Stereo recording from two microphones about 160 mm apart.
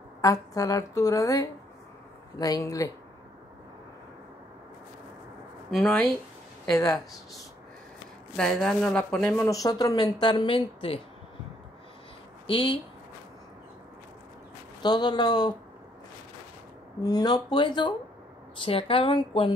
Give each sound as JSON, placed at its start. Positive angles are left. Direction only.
{"t": 0.2, "sound": "speech", "side_deg": 20}
{"t": 5.9, "sound": "speech", "side_deg": 5}
{"t": 6.7, "sound": "speech", "side_deg": 20}
{"t": 8.4, "sound": "speech", "side_deg": 5}
{"t": 9.4, "sound": "speech", "side_deg": 20}
{"t": 12.4, "sound": "speech", "side_deg": 35}
{"t": 14.8, "sound": "speech", "side_deg": 25}
{"t": 17.0, "sound": "a woman's voice", "side_deg": 25}